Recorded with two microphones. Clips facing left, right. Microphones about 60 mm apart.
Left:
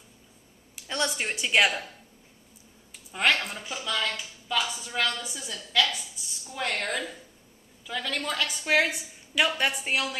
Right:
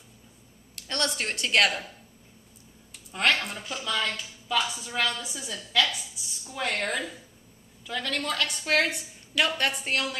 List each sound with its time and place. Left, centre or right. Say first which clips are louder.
0.7 s a woman's voice: left 1 dB; centre
3.1 s speech: even; centre